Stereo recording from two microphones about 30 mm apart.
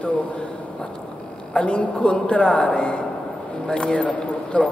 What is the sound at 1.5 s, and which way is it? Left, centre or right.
Speech, left.